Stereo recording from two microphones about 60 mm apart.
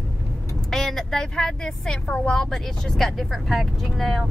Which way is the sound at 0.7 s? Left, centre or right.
Centre.